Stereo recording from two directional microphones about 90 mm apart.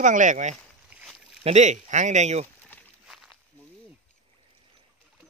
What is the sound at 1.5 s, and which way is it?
Speech, 90° right.